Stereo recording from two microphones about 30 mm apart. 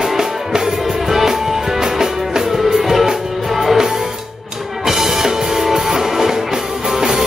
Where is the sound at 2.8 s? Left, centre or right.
Centre.